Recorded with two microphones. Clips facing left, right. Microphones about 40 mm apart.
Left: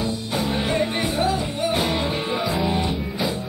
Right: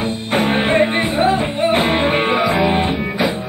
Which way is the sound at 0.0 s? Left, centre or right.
Right.